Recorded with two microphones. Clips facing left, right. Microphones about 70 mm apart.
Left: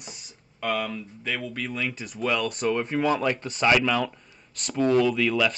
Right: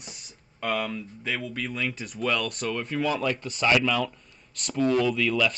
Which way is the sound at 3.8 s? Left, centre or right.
Centre.